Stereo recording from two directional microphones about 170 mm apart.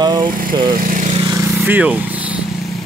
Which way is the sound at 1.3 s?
10° right (ahead or behind).